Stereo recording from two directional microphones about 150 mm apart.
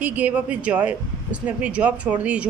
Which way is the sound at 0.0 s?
10° right (ahead or behind).